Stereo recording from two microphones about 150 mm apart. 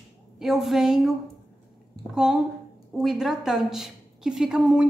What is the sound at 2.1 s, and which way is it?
A woman's voice, 5° right (ahead or behind).